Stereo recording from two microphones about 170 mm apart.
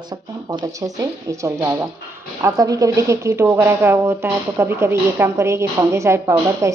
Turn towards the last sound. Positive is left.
turn(degrees=-15)  # may be behind; listen again after turning